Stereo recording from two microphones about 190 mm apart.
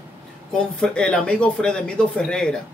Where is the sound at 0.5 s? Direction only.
5° left (ahead or behind).